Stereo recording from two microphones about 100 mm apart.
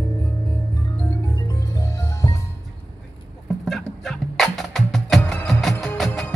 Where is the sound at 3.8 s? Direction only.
5° left (ahead or behind).